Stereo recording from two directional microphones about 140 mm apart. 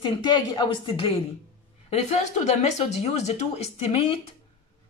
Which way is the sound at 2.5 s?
55° left (ahead or behind).